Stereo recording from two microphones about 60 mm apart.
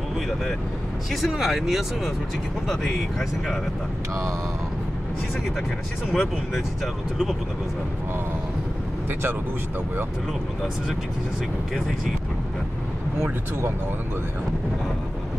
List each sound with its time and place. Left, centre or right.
1.1 s speech: centre
6.1 s speech: centre
13.2 s speech: right